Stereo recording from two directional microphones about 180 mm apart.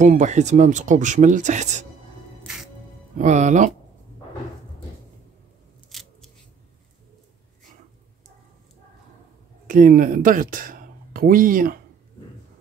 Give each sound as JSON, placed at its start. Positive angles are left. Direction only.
{"t": 0.0, "sound": "speech", "side_deg": -40}
{"t": 3.2, "sound": "speech", "side_deg": -40}
{"t": 5.9, "sound": "scissors", "side_deg": 0}
{"t": 9.7, "sound": "speech", "side_deg": -45}